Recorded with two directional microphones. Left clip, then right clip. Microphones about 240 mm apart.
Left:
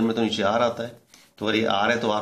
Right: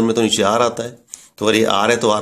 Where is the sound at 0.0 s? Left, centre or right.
Right.